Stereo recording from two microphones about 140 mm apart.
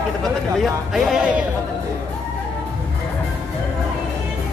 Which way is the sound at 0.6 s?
Centre (ahead or behind).